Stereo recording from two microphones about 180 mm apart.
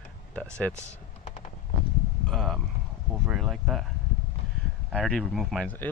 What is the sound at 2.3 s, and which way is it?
Speech, centre (ahead or behind).